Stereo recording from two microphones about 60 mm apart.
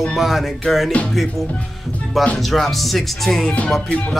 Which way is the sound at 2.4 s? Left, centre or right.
Centre.